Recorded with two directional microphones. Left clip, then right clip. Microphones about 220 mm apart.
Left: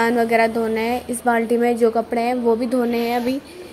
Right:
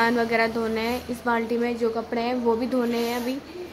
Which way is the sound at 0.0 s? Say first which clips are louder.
Left 5 dB; 15° left (ahead or behind).